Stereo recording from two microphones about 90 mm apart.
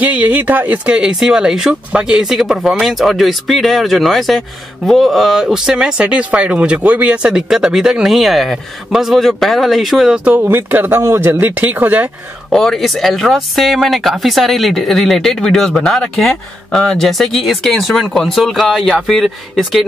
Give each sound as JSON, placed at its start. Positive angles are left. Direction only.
{"t": 0.0, "sound": "speech", "side_deg": -15}
{"t": 10.3, "sound": "speech", "side_deg": -20}
{"t": 12.4, "sound": "speech", "side_deg": 5}